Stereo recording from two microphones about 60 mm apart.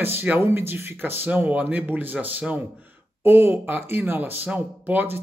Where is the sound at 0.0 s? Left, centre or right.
Right.